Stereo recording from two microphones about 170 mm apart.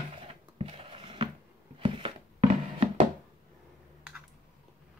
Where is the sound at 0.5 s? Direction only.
35° right (ahead or behind).